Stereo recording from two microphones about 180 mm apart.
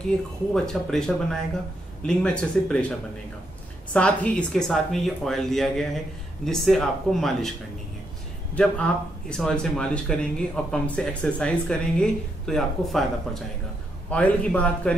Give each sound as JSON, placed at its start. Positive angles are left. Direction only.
{"t": 0.1, "sound": "speech", "side_deg": 5}
{"t": 3.9, "sound": "speech", "side_deg": 5}
{"t": 8.5, "sound": "a man's voice", "side_deg": 5}